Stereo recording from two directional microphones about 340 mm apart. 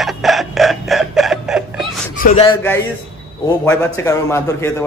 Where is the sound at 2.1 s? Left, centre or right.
Left.